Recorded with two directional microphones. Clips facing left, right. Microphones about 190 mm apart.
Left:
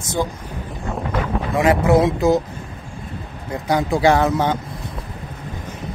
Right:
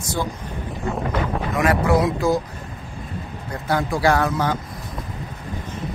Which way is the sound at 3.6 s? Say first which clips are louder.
Left 3 dB; 20° left (ahead or behind).